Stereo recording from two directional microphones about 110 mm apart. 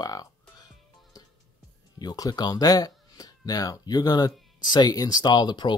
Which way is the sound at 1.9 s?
35° left (ahead or behind).